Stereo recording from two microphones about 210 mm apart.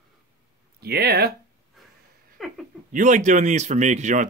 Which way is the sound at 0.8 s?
50° right (ahead or behind).